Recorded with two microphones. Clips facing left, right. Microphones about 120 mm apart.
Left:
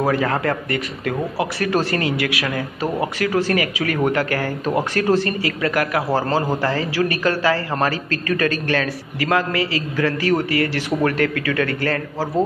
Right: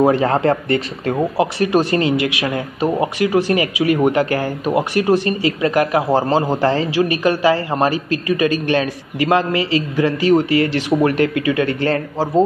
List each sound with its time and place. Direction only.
0.0 s speech: 25° right (ahead or behind)